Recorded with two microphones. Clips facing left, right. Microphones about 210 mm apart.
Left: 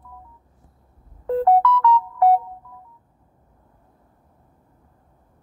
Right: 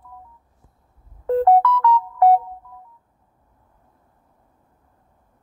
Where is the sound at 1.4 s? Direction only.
45° right (ahead or behind).